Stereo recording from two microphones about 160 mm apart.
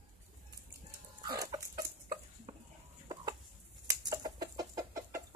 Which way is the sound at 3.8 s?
20° right (ahead or behind).